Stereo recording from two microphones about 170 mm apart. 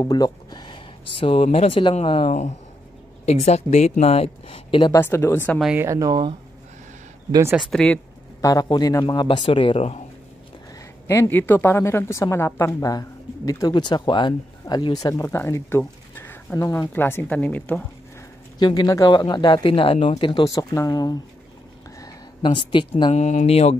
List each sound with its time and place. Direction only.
0.0 s speech: 25° left (ahead or behind)
4.9 s a woman's voice: 15° left (ahead or behind)
5.6 s speech: 5° right (ahead or behind)
5.9 s speech: 20° right (ahead or behind)
7.7 s speech: 5° left (ahead or behind)
8.4 s speech: 20° left (ahead or behind); by 10.0 s 35° left (ahead or behind)
11.1 s a woman's voice: 15° left (ahead or behind)
18.6 s speech: 25° left (ahead or behind)
23.1 s speech: 45° left (ahead or behind)